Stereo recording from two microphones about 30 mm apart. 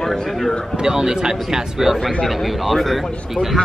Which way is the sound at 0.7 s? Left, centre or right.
Right.